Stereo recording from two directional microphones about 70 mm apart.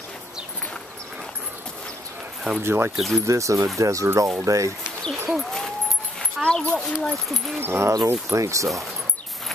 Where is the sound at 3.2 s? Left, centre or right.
Right.